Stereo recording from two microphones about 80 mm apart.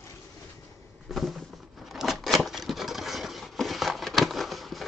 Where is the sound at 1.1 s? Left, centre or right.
Centre.